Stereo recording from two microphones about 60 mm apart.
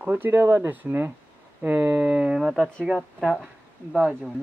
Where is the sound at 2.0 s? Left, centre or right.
Centre.